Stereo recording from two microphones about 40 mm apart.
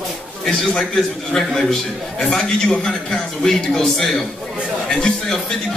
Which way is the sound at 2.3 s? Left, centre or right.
Centre.